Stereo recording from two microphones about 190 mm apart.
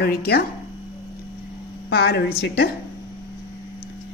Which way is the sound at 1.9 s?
60° left (ahead or behind).